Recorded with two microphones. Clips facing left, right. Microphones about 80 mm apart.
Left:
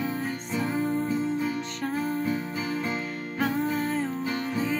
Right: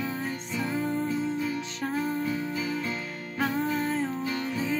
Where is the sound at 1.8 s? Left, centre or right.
Centre.